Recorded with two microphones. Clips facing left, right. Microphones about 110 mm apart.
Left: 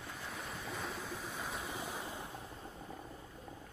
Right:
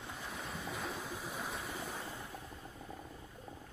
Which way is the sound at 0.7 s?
Centre (ahead or behind).